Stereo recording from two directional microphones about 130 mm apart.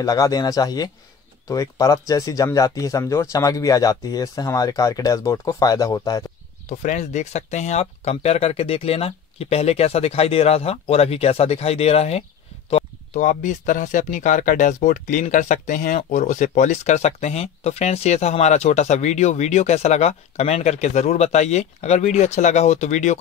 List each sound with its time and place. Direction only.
0.0 s speech: 30° left (ahead or behind)
6.8 s speech: 70° left (ahead or behind); by 12.8 s 50° left (ahead or behind)
13.1 s speech: 75° left (ahead or behind)
16.1 s speech: 70° left (ahead or behind)